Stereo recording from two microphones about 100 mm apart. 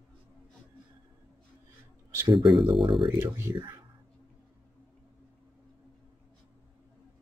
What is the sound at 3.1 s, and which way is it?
Speech, 25° right (ahead or behind).